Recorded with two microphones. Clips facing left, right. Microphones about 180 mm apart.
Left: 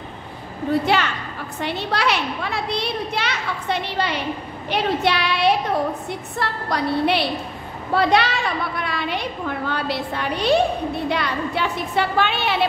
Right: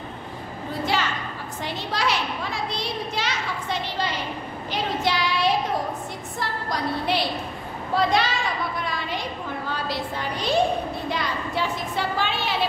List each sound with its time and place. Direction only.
0.9 s music: 65° left (ahead or behind)
1.6 s a child's voice: 65° left (ahead or behind)